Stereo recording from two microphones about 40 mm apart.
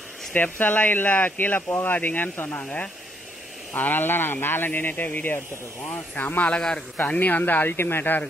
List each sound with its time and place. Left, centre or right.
0.3 s speech: left
2.3 s a man's voice: left
2.6 s speech: left
3.7 s speech: left
7.6 s a man's voice: left
8.0 s speech: left